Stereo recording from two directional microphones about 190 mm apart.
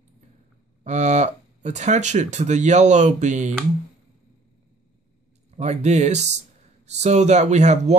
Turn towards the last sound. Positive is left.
turn(degrees=-35)  # may be behind; listen again after turning